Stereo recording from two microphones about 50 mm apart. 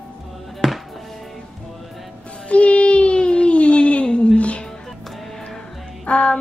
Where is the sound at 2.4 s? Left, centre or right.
Left.